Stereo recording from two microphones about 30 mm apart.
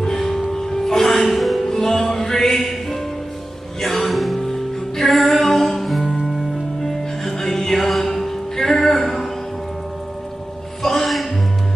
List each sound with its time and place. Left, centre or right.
0.0 s music: centre
1.0 s music: centre
1.7 s music: centre
3.8 s music: centre
10.8 s music: centre